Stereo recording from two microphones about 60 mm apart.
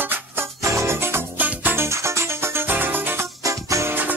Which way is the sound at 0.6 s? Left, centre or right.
Right.